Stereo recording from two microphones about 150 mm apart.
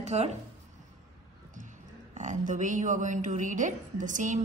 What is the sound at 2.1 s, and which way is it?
A woman's voice, 55° right (ahead or behind).